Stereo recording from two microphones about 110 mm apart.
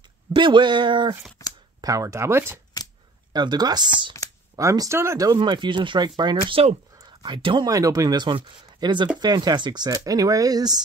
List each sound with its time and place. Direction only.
0.3 s speech: 45° right (ahead or behind)
1.4 s shuffling cards: 25° left (ahead or behind)
1.8 s speech: 30° right (ahead or behind)
3.3 s speech: 40° right (ahead or behind)
4.6 s speech: 30° right (ahead or behind)
6.5 s speech: 65° right (ahead or behind)
7.0 s a sound: 45° right (ahead or behind)
7.6 s speech: 35° right (ahead or behind)